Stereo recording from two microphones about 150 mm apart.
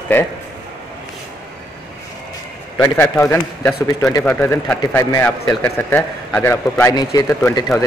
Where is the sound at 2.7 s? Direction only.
10° left (ahead or behind).